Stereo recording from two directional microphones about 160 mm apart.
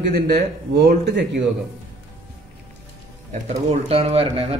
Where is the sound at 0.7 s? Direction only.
90° right.